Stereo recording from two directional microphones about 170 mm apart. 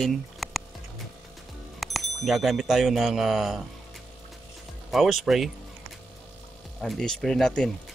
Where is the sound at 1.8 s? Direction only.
Centre (ahead or behind).